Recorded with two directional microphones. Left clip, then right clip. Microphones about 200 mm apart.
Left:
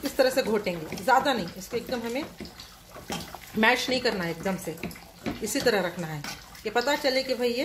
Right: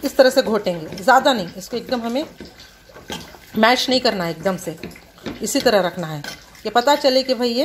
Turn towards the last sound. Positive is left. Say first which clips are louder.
# right 8 dB
turn(degrees=-25)  # may be behind; listen again after turning